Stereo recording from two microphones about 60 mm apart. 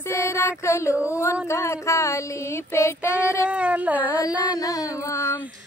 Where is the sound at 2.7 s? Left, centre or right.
Left.